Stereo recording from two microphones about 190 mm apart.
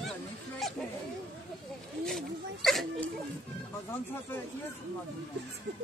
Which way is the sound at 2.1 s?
Centre (ahead or behind).